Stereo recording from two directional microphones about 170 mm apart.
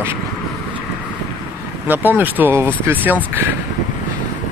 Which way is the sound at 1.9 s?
10° right (ahead or behind).